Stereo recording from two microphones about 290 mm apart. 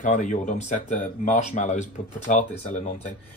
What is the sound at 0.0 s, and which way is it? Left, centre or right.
Speech, left.